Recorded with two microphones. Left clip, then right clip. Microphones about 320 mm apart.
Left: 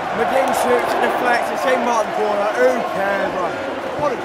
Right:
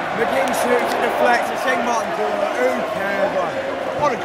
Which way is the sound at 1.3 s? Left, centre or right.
Centre.